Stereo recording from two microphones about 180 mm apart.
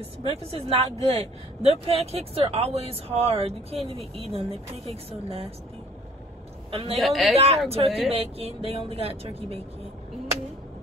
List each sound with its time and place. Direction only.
0.2 s speech: 35° right (ahead or behind)
6.7 s a man's voice: 30° right (ahead or behind)
7.0 s speech: centre (ahead or behind)
7.3 s speech: 35° right (ahead or behind)